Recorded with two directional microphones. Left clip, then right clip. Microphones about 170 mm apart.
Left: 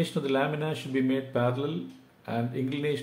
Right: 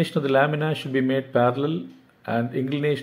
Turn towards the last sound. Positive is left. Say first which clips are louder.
# right 6 dB
turn(degrees=-30)  # may be behind; listen again after turning